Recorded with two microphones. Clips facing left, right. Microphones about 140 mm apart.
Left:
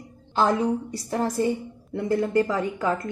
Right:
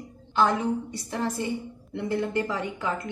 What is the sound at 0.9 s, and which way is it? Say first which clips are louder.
A woman's voice: left 4 dB; 40° left (ahead or behind).